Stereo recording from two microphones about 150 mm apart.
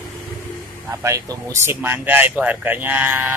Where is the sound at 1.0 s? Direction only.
20° right (ahead or behind).